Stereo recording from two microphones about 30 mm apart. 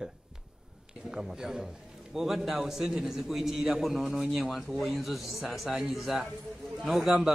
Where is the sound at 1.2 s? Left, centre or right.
Centre.